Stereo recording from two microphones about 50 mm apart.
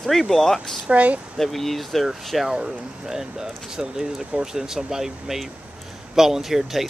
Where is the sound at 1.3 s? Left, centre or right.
Centre.